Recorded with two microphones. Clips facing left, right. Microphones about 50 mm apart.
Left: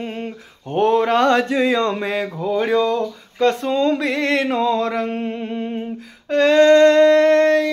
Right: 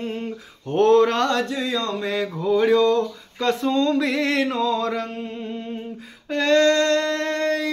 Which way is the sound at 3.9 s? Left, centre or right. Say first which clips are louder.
Left 1 dB; centre.